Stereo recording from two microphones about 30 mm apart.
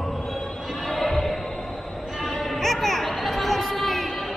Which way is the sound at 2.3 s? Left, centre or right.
Centre.